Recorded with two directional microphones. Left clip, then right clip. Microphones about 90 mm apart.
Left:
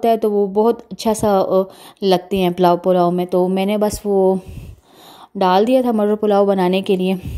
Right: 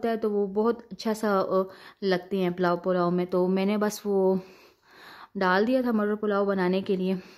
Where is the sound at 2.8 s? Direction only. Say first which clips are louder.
Left 11 dB; 35° left (ahead or behind).